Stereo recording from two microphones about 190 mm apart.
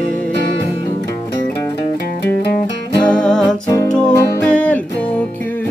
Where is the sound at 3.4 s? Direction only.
20° left (ahead or behind).